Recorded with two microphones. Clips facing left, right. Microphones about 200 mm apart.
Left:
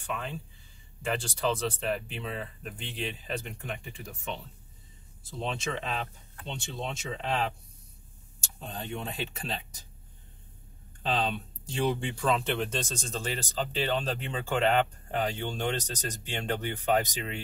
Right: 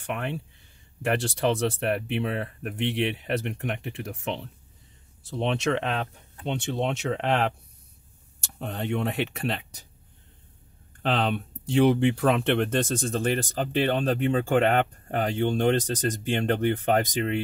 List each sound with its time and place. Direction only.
0.0 s speech: 70° right (ahead or behind)
11.0 s speech: 65° right (ahead or behind)